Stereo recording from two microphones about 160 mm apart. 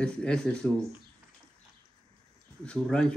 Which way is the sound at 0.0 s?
5° left (ahead or behind).